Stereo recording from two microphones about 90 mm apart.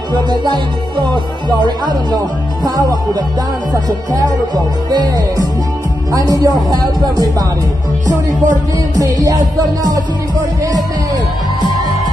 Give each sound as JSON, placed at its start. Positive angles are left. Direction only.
{"t": 1.1, "sound": "speech", "side_deg": -55}
{"t": 4.9, "sound": "speech", "side_deg": -45}
{"t": 8.9, "sound": "music", "side_deg": -40}